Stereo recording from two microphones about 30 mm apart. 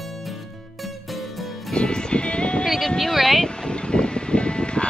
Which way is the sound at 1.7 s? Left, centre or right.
Left.